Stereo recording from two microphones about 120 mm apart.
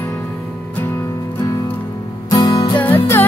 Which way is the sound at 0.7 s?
15° left (ahead or behind).